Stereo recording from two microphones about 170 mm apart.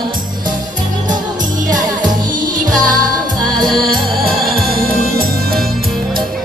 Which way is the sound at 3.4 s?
Centre (ahead or behind).